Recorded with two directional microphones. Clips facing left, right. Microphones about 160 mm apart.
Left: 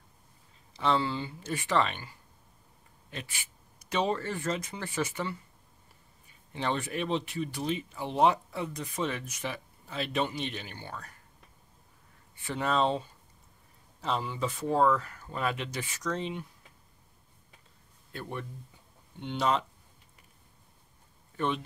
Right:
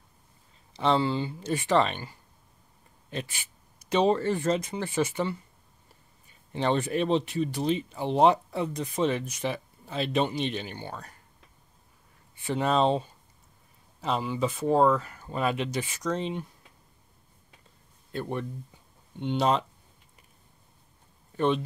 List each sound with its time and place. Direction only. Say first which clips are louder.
0.7 s speech: right 4 dB; 25° right (ahead or behind)
3.1 s speech: right 6 dB; 30° right (ahead or behind)
6.5 s speech: right 6 dB; 30° right (ahead or behind)
12.4 s speech: right 4 dB; 20° right (ahead or behind)
14.0 s speech: right 4 dB; 15° right (ahead or behind)
19.2 s speech: right 4 dB; 20° right (ahead or behind)